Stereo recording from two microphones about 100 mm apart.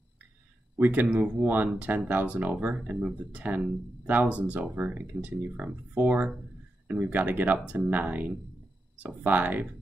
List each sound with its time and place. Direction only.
0.7 s speech: 20° right (ahead or behind)